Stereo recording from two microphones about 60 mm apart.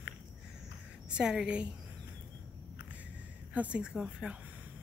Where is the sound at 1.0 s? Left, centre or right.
Centre.